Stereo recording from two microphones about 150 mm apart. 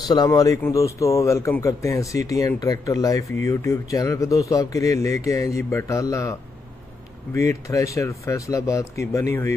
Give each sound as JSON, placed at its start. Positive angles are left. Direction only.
{"t": 0.1, "sound": "speech", "side_deg": 25}
{"t": 7.3, "sound": "speech", "side_deg": 20}